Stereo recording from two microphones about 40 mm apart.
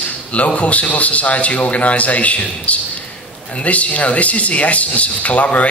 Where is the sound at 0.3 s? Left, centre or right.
Left.